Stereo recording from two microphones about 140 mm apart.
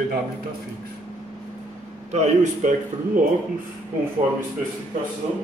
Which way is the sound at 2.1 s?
55° right (ahead or behind).